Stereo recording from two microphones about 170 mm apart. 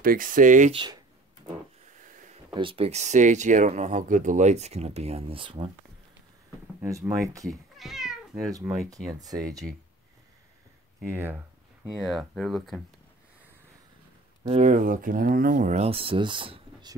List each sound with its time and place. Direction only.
0.0 s speech: 55° right (ahead or behind)
2.0 s a sound: 50° right (ahead or behind)
2.5 s speech: 30° right (ahead or behind)
7.4 s cat: centre (ahead or behind)
8.5 s speech: 20° right (ahead or behind)
11.1 s speech: 15° right (ahead or behind)
12.0 s speech: centre (ahead or behind)
14.4 s speech: 40° right (ahead or behind)